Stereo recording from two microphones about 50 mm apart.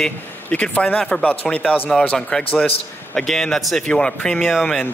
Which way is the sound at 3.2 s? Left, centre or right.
Centre.